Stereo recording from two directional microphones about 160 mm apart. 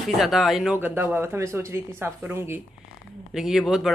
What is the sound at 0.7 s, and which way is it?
Speech, 10° right (ahead or behind).